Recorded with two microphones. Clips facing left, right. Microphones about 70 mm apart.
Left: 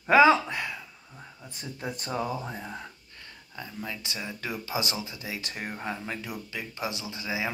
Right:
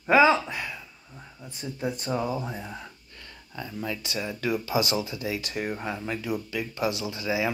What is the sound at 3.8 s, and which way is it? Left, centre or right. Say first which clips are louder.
Speech: right 6 dB; left.